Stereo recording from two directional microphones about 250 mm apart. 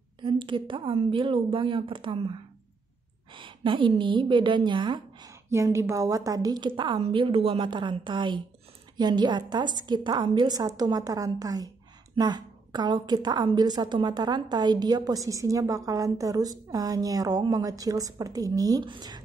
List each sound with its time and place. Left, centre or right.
0.2 s a woman's voice: centre
3.3 s a woman's voice: centre